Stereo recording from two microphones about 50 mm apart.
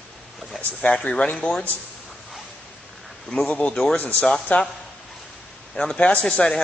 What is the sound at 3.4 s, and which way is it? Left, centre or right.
Speech, left.